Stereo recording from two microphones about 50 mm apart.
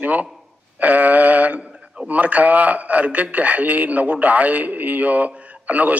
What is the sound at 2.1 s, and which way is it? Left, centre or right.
A man's voice, right.